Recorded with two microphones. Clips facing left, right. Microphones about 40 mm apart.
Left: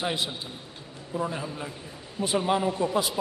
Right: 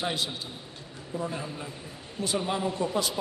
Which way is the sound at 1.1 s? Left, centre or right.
Left.